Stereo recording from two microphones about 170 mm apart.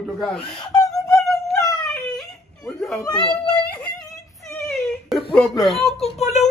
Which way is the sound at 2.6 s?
5° left (ahead or behind).